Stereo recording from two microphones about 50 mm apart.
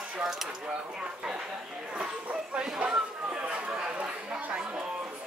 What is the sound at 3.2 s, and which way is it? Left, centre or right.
Chatter, right.